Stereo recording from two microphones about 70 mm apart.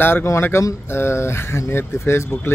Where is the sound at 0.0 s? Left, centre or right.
Left.